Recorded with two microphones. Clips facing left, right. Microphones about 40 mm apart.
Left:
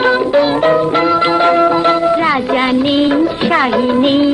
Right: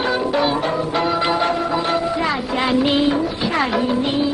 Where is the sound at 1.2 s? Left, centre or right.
Left.